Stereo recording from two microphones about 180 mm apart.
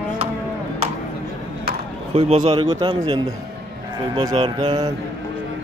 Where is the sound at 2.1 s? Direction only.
30° right (ahead or behind).